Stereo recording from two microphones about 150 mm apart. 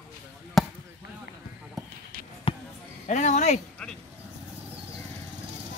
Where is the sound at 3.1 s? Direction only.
55° left (ahead or behind).